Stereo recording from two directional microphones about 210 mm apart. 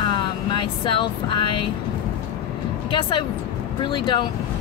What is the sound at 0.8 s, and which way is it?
Speech, 25° left (ahead or behind).